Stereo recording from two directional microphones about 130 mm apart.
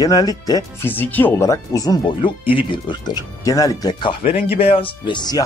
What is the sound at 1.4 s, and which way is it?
Speech, 25° left (ahead or behind).